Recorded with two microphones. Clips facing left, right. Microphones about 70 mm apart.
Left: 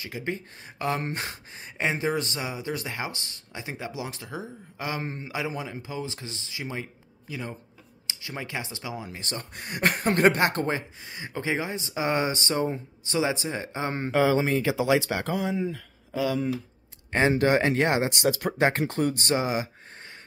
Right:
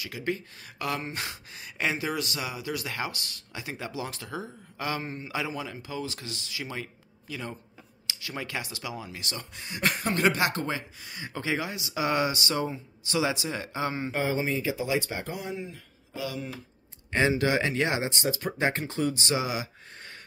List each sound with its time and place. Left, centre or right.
0.0 s speech: left
5.0 s speech: left
11.0 s speech: left
14.3 s speech: left
17.1 s speech: left